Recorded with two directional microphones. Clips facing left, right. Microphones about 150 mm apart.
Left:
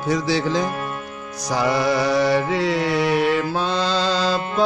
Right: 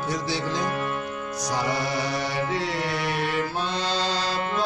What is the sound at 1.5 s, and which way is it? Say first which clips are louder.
Mantra: left 8 dB; 90° left.